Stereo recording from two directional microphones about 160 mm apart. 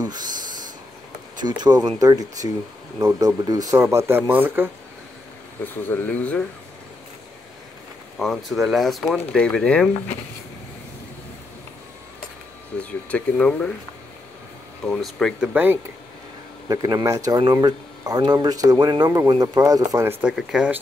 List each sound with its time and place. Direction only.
0.0 s a sound: 25° right (ahead or behind)
1.4 s speech: 25° right (ahead or behind)
5.9 s speech: 10° left (ahead or behind)
8.2 s speech: centre (ahead or behind)
12.7 s speech: 5° left (ahead or behind)
14.9 s speech: 5° left (ahead or behind)
15.5 s speech: 10° right (ahead or behind)
16.6 s speech: 25° right (ahead or behind); by 20.8 s 5° right (ahead or behind)